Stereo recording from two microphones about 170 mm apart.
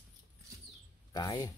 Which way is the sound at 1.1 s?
25° left (ahead or behind).